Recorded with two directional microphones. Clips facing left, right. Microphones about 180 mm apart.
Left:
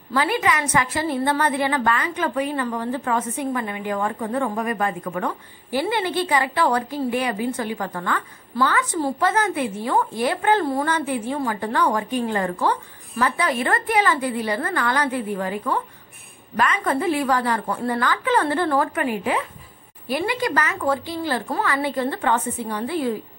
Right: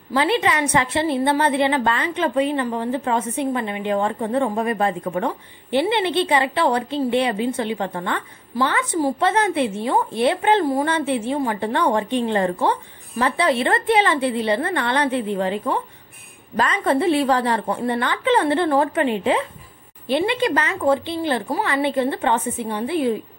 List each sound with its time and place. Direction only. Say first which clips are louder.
0.1 s a woman's voice: right 2 dB; 20° right (ahead or behind)